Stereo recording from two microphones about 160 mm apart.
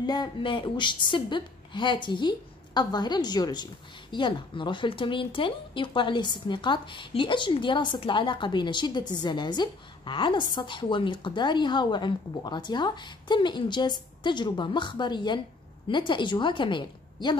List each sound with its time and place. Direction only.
0.0 s a woman's voice: 25° left (ahead or behind)